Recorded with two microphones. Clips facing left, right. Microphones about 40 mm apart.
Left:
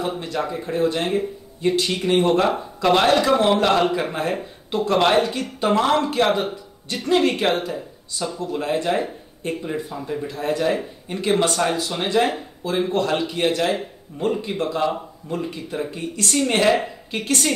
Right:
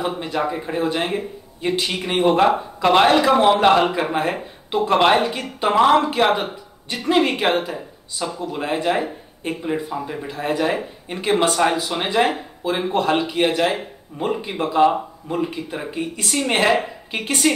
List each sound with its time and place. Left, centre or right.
0.0 s speech: centre